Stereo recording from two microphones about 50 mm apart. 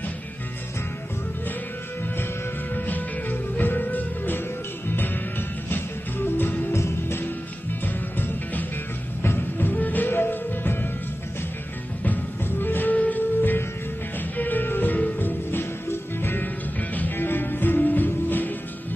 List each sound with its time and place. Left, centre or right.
2.7 s music: left
6.4 s music: left
6.7 s music: left
7.8 s music: left
12.0 s music: left
13.4 s music: left